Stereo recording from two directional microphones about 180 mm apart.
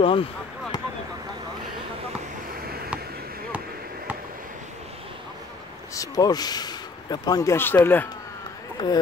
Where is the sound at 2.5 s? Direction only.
60° right (ahead or behind).